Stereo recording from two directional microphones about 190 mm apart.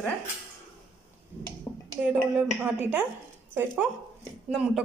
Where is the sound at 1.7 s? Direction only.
20° left (ahead or behind).